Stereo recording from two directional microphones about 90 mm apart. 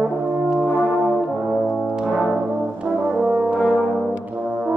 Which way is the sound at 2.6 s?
15° right (ahead or behind).